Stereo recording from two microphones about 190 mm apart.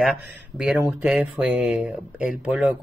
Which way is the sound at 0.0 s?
5° right (ahead or behind).